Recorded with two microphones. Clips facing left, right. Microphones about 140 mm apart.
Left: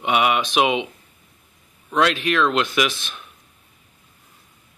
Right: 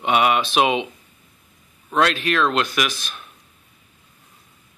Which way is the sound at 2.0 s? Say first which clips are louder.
Even; 15° left (ahead or behind).